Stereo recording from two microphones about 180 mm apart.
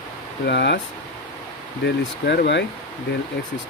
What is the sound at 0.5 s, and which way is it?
Speech, 70° left (ahead or behind).